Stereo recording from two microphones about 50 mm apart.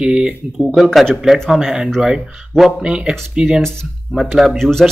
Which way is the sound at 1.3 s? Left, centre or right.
Centre.